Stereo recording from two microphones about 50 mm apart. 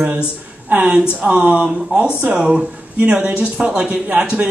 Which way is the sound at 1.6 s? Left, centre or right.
Right.